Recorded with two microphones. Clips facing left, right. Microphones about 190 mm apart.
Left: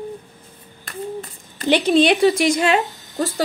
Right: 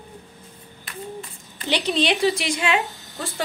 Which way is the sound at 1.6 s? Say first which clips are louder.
Left 8 dB; 50° left (ahead or behind).